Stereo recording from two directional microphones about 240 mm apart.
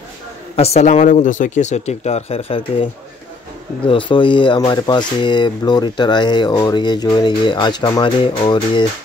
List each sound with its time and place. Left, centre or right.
0.6 s speech: left